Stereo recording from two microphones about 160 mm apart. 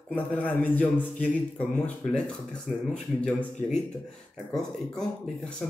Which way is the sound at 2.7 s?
5° right (ahead or behind).